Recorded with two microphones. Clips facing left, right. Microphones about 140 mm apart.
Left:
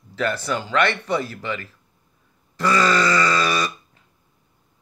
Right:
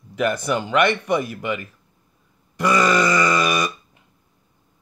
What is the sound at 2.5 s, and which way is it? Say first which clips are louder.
Groan: right 1 dB; 15° right (ahead or behind).